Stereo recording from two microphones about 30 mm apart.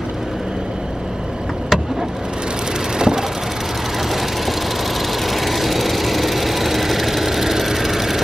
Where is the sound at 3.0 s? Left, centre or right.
Right.